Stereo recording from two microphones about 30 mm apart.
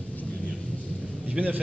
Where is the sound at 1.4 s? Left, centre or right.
Right.